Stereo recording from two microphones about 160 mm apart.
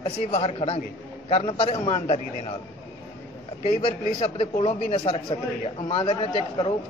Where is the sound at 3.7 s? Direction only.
35° left (ahead or behind).